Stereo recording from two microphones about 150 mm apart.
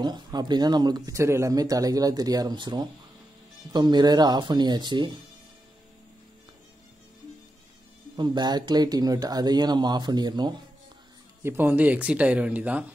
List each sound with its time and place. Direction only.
0.0 s speech: 30° right (ahead or behind)
8.2 s speech: 30° right (ahead or behind)
11.4 s speech: 15° right (ahead or behind)